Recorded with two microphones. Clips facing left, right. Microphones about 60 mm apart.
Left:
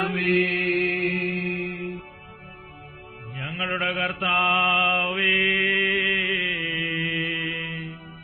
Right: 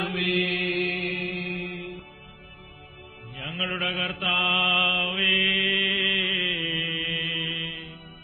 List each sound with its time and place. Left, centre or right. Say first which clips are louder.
0.2 s mantra: left 4 dB; left
3.3 s music: left 2 dB; left
3.8 s mantra: left 4 dB; left